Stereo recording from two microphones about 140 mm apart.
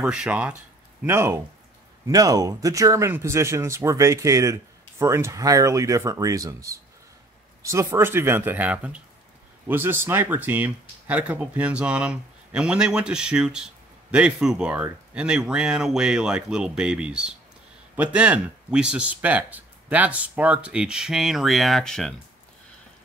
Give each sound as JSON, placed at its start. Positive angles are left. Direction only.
{"t": 0.0, "sound": "speech", "side_deg": -5}